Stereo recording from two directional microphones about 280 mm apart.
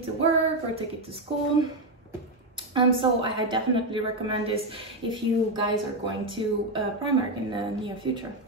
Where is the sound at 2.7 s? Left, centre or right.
Centre.